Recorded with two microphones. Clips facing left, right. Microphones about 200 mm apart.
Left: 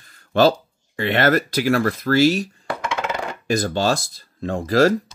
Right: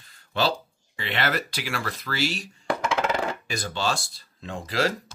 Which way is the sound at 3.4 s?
45° left (ahead or behind).